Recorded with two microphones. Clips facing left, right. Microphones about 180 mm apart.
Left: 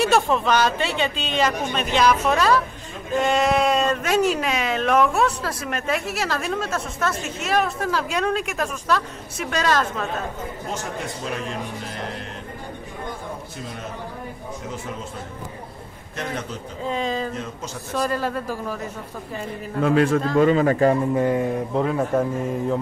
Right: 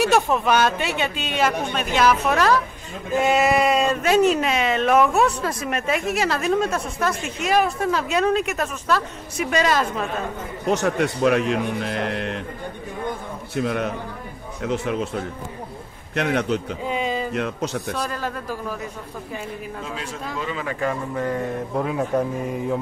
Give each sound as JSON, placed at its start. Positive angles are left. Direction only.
{"t": 0.0, "sound": "a woman's voice", "side_deg": -10}
{"t": 10.7, "sound": "a man's voice", "side_deg": -70}
{"t": 13.6, "sound": "a man's voice", "side_deg": -70}
{"t": 16.8, "sound": "speech", "side_deg": -10}
{"t": 17.3, "sound": "a man's voice", "side_deg": -70}
{"t": 17.9, "sound": "a woman's voice", "side_deg": 5}
{"t": 19.8, "sound": "a man's voice", "side_deg": 60}
{"t": 20.3, "sound": "speech", "side_deg": 45}
{"t": 21.1, "sound": "speech", "side_deg": 20}
{"t": 21.7, "sound": "a woman's voice", "side_deg": 0}